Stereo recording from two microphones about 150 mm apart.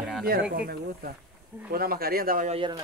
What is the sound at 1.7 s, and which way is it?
Speech, 85° right.